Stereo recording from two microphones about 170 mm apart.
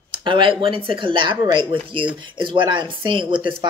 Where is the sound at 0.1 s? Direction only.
30° right (ahead or behind).